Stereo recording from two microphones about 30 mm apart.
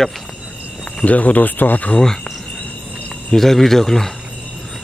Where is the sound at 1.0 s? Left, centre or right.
Left.